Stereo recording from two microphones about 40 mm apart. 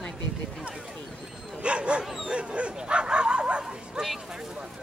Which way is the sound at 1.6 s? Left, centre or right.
Right.